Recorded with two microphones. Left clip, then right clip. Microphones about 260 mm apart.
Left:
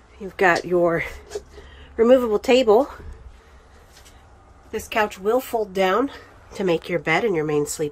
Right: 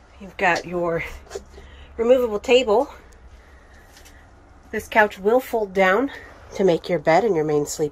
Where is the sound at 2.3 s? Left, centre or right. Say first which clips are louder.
Left 1 dB; centre.